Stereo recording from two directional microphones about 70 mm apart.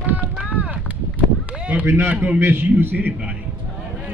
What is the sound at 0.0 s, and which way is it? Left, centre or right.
Run, right.